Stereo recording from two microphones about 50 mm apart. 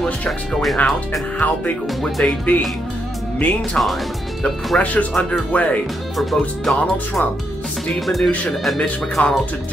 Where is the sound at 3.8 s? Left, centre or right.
Left.